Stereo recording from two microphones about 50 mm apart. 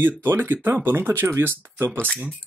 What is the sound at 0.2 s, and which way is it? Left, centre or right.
Speech, right.